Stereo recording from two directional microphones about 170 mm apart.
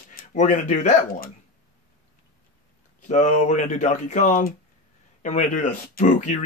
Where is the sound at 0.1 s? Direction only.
50° left (ahead or behind).